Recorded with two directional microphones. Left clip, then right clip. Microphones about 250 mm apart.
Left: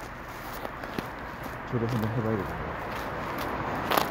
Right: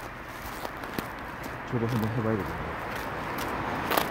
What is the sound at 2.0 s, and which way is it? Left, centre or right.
Speech, right.